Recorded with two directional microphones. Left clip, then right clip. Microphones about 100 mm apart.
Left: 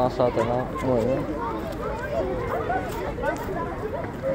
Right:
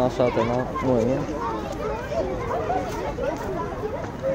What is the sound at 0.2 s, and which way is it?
Speech, 45° right (ahead or behind).